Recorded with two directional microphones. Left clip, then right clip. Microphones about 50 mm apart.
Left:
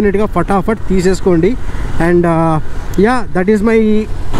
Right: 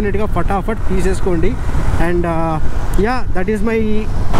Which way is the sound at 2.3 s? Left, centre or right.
Left.